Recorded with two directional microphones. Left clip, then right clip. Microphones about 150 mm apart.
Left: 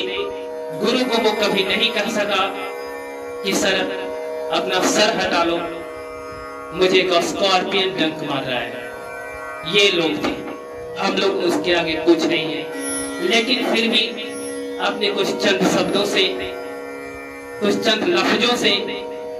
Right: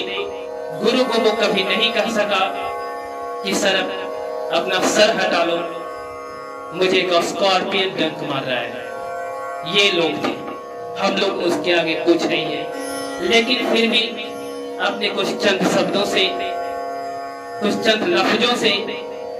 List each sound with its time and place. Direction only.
0.7 s a man's voice: 15° right (ahead or behind)
6.8 s a man's voice: 10° right (ahead or behind)
9.7 s a man's voice: 10° right (ahead or behind)
17.6 s a man's voice: 15° right (ahead or behind)